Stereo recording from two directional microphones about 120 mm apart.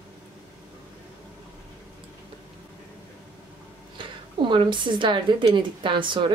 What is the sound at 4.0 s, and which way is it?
A woman's voice, 40° right (ahead or behind).